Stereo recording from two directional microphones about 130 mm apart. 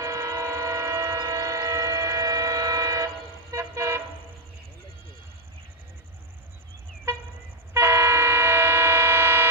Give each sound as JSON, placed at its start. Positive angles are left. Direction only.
{"t": 0.0, "sound": "train", "side_deg": -25}
{"t": 3.5, "sound": "toot", "side_deg": -20}
{"t": 7.7, "sound": "vehicle", "side_deg": -20}